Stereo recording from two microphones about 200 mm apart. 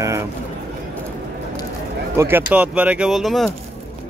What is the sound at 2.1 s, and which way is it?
Speech, 10° right (ahead or behind).